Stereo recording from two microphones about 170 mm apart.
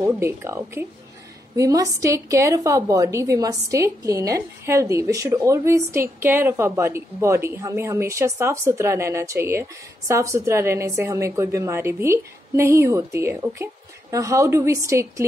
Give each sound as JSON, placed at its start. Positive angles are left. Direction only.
{"t": 0.1, "sound": "a woman's voice", "side_deg": -15}